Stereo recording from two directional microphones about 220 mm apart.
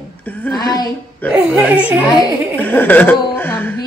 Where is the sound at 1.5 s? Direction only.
5° right (ahead or behind).